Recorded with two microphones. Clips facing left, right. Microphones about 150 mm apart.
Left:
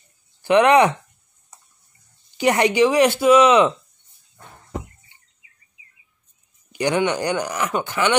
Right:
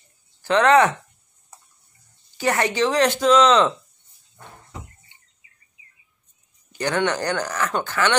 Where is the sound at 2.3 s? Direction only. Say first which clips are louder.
Left 5 dB; 15° left (ahead or behind).